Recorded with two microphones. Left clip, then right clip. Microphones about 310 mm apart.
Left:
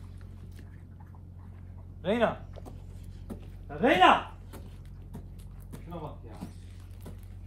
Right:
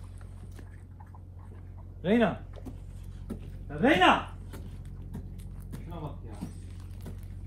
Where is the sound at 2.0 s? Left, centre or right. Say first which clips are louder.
Right 1 dB; centre.